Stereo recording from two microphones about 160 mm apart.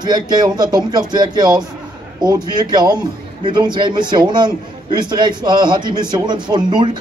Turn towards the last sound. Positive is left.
turn(degrees=-30)  # may be behind; listen again after turning